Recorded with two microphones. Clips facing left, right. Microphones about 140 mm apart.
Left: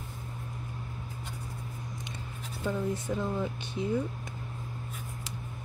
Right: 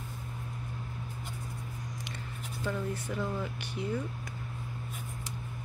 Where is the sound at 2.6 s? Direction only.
20° left (ahead or behind).